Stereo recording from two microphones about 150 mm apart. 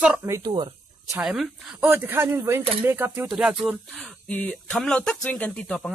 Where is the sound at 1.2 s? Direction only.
5° right (ahead or behind).